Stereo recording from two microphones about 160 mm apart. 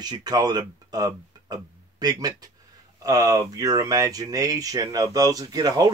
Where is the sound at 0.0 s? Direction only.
25° right (ahead or behind).